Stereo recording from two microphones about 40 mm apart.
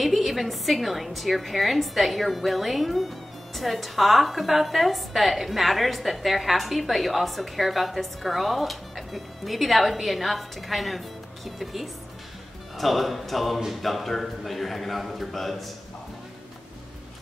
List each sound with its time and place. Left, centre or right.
0.0 s a woman's voice: centre